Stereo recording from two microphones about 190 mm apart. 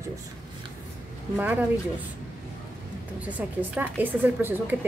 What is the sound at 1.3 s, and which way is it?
Speech, 10° right (ahead or behind).